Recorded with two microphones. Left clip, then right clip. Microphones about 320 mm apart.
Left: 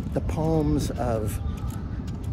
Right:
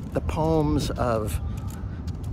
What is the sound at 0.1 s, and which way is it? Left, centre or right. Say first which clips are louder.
Speech: right 2 dB; centre.